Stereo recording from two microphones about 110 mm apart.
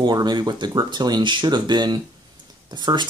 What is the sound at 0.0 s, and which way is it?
Speech, 40° right (ahead or behind).